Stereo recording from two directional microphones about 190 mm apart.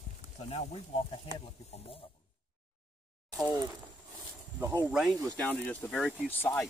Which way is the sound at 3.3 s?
15° right (ahead or behind).